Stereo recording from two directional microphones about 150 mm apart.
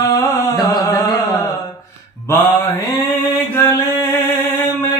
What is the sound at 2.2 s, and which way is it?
Music, 15° left (ahead or behind).